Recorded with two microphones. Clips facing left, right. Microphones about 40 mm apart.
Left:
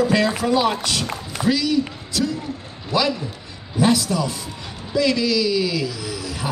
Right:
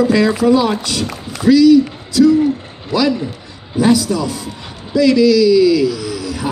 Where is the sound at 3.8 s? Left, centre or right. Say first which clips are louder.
Right 5 dB; left.